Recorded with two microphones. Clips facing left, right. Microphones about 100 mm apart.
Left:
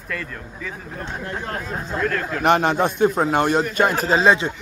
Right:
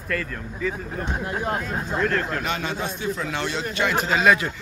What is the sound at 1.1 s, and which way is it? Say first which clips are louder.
Speech: right 3 dB; 15° right (ahead or behind).